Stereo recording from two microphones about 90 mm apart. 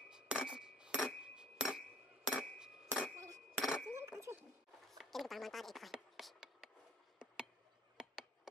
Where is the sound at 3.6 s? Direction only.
Centre (ahead or behind).